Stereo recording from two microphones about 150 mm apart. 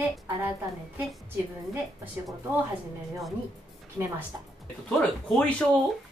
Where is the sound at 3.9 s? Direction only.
15° right (ahead or behind).